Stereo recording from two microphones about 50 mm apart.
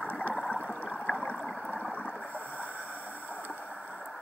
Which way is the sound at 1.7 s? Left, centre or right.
Left.